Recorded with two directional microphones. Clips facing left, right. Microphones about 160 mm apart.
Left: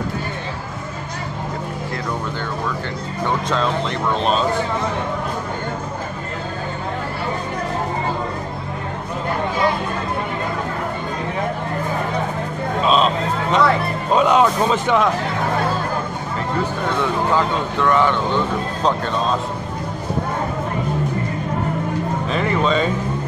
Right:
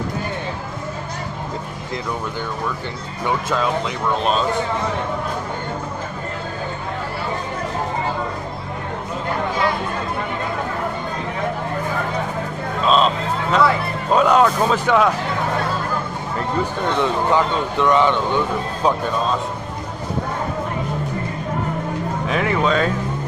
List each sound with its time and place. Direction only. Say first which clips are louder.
3.4 s speech: even; 5° right (ahead or behind)
12.8 s a sound: even; 5° left (ahead or behind)
14.1 s speech: even; 5° left (ahead or behind)
17.3 s speech: right 1 dB; 15° right (ahead or behind)
22.3 s speech: even; 5° right (ahead or behind)